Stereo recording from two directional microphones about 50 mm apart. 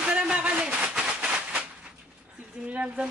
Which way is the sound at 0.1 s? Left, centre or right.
Right.